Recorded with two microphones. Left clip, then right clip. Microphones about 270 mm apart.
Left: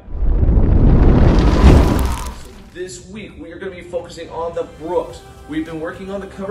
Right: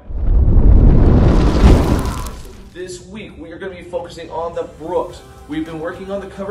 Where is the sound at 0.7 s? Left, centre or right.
Centre.